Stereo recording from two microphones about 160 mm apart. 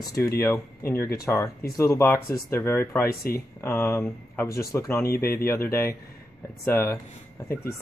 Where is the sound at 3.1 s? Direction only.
70° left (ahead or behind).